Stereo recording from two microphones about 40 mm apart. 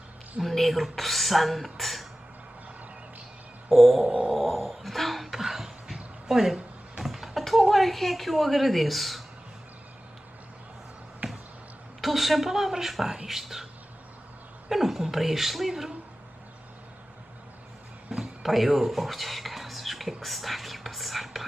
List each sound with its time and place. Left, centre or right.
0.4 s speech: centre
3.6 s a sound: centre
4.0 s a sound: right
4.3 s cat: centre
6.2 s a sound: centre
7.7 s a woman's voice: centre
11.2 s finger snapping: right
12.0 s speech: centre
14.7 s speech: centre
18.1 s whispering: centre